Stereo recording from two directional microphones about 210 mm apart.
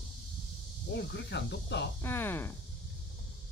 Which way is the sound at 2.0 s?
10° left (ahead or behind).